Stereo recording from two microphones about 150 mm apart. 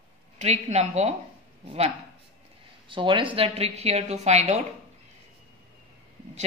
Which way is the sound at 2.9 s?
35° right (ahead or behind).